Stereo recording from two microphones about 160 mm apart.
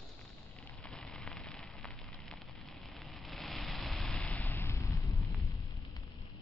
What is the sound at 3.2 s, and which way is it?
Vehicle, centre (ahead or behind).